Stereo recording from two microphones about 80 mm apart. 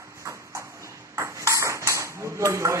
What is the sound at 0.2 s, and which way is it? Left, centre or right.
Ping, right.